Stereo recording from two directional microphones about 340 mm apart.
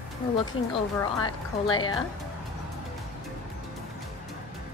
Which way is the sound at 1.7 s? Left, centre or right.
Centre.